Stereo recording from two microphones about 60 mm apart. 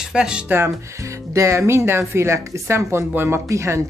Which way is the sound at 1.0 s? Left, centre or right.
Right.